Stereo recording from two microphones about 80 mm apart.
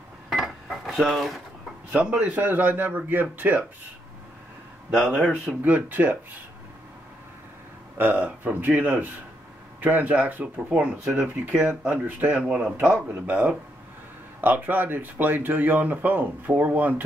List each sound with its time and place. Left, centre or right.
0.3 s a sound: centre
1.9 s speech: centre
4.9 s speech: centre
5.6 s speech: right
8.0 s speech: right